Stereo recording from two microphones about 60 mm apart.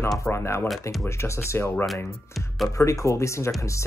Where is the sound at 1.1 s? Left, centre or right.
Left.